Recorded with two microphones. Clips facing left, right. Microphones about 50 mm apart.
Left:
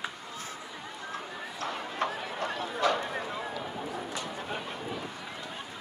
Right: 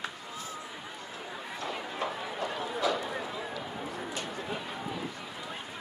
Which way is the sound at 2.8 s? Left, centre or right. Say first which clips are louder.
Left 3 dB; left.